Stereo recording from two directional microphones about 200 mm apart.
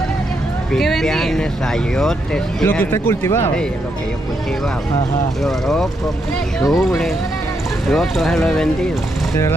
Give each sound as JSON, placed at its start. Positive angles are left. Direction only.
{"t": 0.7, "sound": "speech", "side_deg": 0}
{"t": 5.4, "sound": "speech", "side_deg": 0}